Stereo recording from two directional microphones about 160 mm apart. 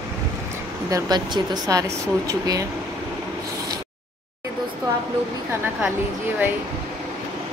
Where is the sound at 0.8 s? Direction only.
25° right (ahead or behind).